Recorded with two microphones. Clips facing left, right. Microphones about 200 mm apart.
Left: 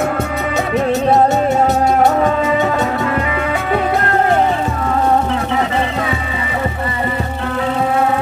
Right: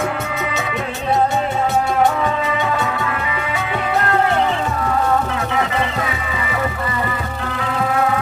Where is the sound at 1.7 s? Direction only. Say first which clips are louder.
Left 4 dB; 40° left (ahead or behind).